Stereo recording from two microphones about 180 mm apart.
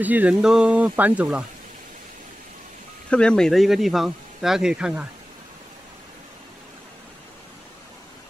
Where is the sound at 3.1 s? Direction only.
5° left (ahead or behind).